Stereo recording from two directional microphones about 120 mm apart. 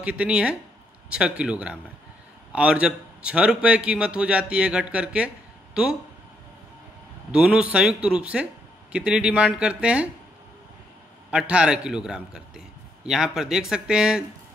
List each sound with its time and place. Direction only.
0.0 s a man's voice: 10° right (ahead or behind)
7.2 s a man's voice: 5° right (ahead or behind)
11.2 s a man's voice: 10° right (ahead or behind)